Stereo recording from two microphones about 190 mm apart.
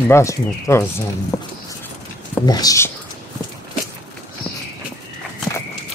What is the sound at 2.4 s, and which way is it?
Speech, 20° left (ahead or behind).